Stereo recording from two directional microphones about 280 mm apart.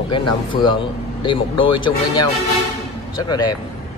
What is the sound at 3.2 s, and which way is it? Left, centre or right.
Speech, centre.